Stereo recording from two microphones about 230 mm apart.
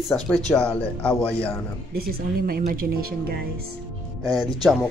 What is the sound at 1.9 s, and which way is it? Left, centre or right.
Speech, right.